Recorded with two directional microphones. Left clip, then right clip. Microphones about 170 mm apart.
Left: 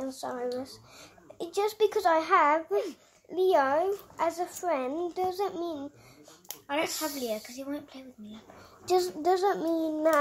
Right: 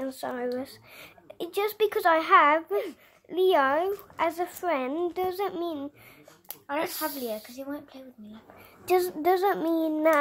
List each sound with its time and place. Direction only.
0.0 s speech: 50° right (ahead or behind)
7.2 s speech: 15° right (ahead or behind)
8.8 s speech: 40° right (ahead or behind)